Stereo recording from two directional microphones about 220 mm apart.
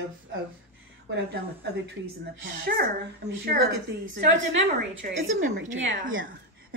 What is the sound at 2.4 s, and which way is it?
Speech, 50° right (ahead or behind).